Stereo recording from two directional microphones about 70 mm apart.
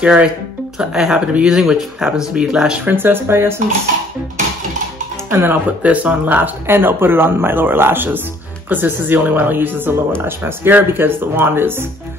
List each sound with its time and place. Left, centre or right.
0.0 s speech: centre
2.8 s speech: right
5.3 s speech: right